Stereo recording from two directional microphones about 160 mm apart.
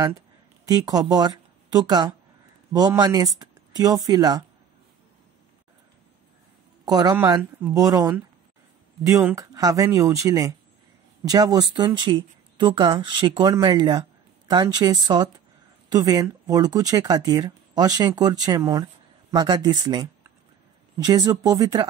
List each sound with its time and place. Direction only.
0.7 s speech: 25° right (ahead or behind)
6.8 s speech: 25° right (ahead or behind)
9.3 s speech: 20° right (ahead or behind)